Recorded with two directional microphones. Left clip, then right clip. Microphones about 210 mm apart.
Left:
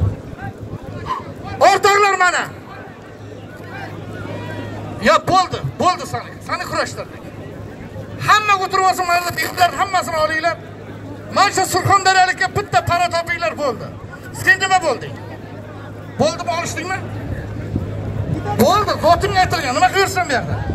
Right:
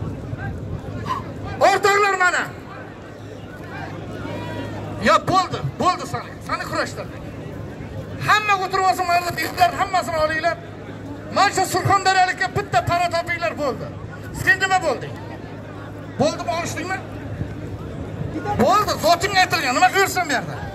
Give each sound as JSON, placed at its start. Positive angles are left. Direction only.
{"t": 1.6, "sound": "a man's voice", "side_deg": 45}
{"t": 5.0, "sound": "a man's voice", "side_deg": 50}
{"t": 8.2, "sound": "a man's voice", "side_deg": 45}
{"t": 16.2, "sound": "a man's voice", "side_deg": 45}
{"t": 18.9, "sound": "speech", "side_deg": 10}